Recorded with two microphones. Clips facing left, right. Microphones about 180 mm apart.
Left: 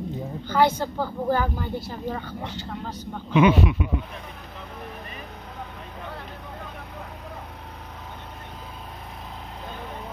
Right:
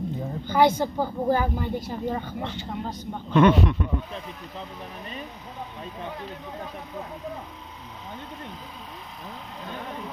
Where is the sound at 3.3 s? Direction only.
5° left (ahead or behind).